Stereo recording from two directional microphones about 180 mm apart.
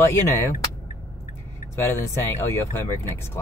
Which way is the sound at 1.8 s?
15° left (ahead or behind).